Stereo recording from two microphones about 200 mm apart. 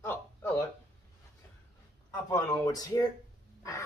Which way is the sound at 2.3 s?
20° left (ahead or behind).